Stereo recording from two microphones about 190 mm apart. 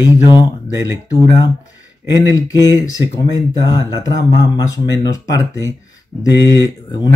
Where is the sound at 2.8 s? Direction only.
15° left (ahead or behind).